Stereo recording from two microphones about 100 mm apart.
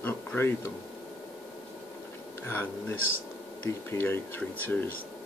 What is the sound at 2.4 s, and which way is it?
Speech, 20° left (ahead or behind).